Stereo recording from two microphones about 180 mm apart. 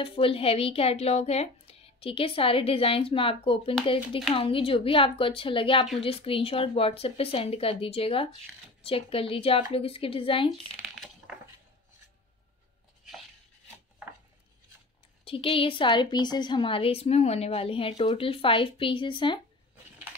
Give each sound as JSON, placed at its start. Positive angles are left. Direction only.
{"t": 0.0, "sound": "a woman's voice", "side_deg": 30}
{"t": 15.2, "sound": "a woman's voice", "side_deg": 30}